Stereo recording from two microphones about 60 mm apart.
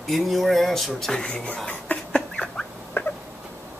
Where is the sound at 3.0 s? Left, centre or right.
Left.